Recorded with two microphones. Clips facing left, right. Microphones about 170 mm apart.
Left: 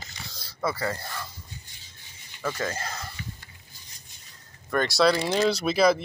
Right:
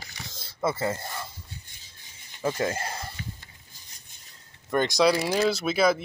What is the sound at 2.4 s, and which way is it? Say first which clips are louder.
Speech: right 3 dB; 25° right (ahead or behind).